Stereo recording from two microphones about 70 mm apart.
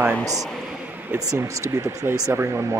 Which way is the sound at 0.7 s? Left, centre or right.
Right.